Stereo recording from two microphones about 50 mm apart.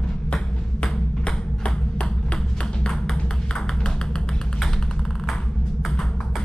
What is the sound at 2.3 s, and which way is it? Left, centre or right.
Music, centre.